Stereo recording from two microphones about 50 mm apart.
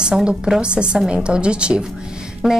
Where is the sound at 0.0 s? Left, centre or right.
Centre.